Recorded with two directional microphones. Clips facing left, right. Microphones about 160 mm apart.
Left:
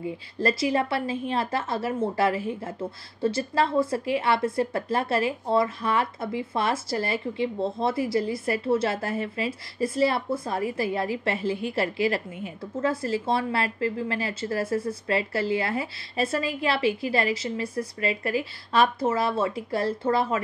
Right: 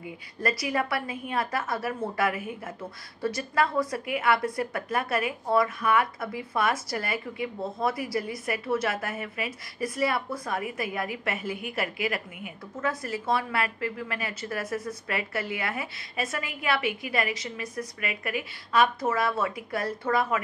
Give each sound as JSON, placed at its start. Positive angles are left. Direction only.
{"t": 0.0, "sound": "a woman's voice", "side_deg": 25}